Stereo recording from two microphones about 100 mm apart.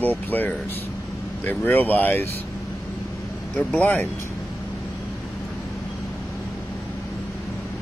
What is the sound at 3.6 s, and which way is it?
Speech, 15° left (ahead or behind).